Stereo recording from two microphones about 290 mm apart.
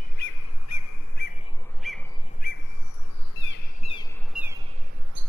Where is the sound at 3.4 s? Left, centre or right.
Left.